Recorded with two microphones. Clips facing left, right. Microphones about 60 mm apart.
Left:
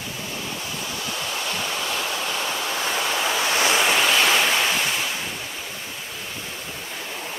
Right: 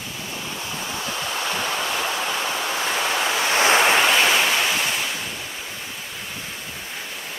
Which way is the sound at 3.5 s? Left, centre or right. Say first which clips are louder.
Right 4 dB; right.